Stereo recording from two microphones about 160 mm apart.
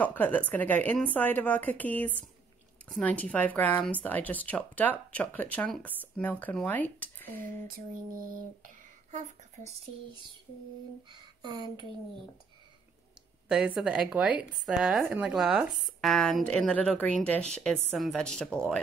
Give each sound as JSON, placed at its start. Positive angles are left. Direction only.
{"t": 0.0, "sound": "speech", "side_deg": 10}
{"t": 7.6, "sound": "lullaby", "side_deg": -60}
{"t": 8.6, "sound": "a sound", "side_deg": -50}
{"t": 11.1, "sound": "speech", "side_deg": -25}
{"t": 13.5, "sound": "speech", "side_deg": -5}